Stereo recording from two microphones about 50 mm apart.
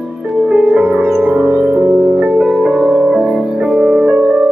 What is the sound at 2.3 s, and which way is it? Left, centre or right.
Music, centre.